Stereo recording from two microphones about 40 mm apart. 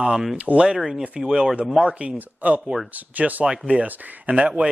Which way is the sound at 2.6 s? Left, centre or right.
Centre.